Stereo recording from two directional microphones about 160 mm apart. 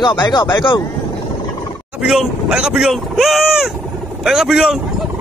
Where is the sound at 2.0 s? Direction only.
Centre (ahead or behind).